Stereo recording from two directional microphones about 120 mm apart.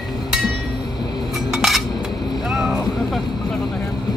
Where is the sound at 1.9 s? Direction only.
35° left (ahead or behind).